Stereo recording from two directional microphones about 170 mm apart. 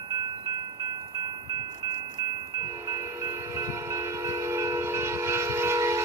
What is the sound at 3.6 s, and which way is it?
Train, 15° right (ahead or behind).